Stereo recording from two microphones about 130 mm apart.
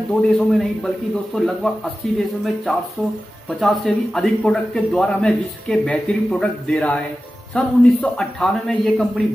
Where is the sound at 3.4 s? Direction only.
5° left (ahead or behind).